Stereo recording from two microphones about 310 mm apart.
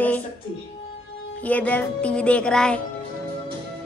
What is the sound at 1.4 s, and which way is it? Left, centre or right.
Speech, centre.